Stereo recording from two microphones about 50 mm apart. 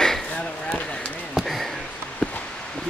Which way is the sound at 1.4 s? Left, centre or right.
Centre.